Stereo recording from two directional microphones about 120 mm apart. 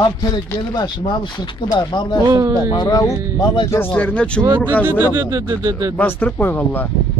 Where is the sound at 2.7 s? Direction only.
35° left (ahead or behind).